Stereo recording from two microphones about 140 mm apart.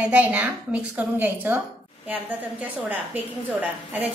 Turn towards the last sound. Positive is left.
turn(degrees=-10)  # may be behind; listen again after turning